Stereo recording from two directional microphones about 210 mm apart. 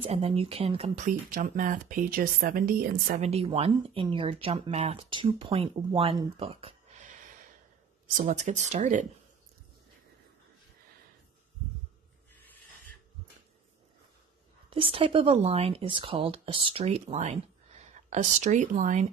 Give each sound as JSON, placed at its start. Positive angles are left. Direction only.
{"t": 0.0, "sound": "speech", "side_deg": -30}
{"t": 3.3, "sound": "speech", "side_deg": -30}
{"t": 8.2, "sound": "speech", "side_deg": -35}
{"t": 14.7, "sound": "speech", "side_deg": -25}